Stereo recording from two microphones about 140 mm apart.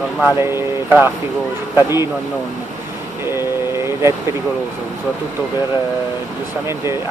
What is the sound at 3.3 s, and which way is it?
Vehicle, 20° right (ahead or behind).